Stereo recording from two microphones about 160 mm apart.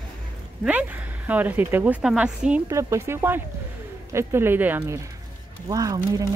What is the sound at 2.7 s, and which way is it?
A woman's voice, 20° right (ahead or behind).